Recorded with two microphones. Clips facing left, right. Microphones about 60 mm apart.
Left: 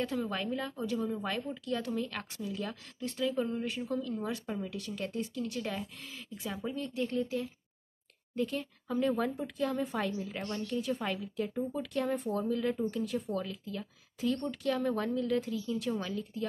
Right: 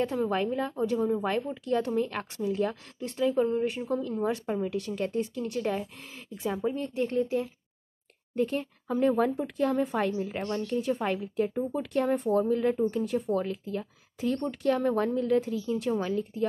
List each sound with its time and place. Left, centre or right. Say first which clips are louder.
0.3 s speech: right 7 dB; right
3.0 s speech: right 6 dB; right